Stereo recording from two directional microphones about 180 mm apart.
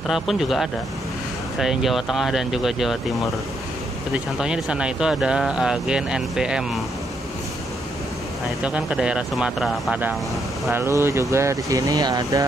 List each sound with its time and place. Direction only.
0.1 s speech: centre (ahead or behind)
8.6 s speech: 5° right (ahead or behind)